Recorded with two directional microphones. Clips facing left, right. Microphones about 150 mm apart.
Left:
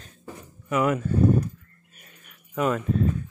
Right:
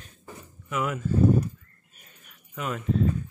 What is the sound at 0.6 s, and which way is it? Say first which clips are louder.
Speech: left 6 dB; 55° left (ahead or behind).